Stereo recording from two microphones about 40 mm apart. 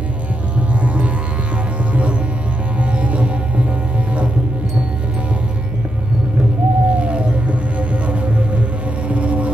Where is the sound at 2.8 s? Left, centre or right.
Right.